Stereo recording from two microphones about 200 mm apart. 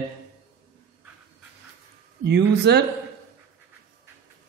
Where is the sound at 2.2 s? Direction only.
55° right (ahead or behind).